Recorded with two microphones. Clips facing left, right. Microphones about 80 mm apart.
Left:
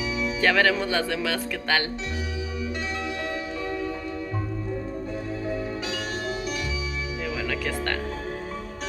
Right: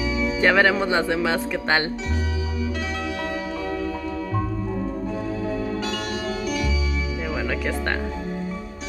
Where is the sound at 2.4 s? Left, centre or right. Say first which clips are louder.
Right 3 dB; centre.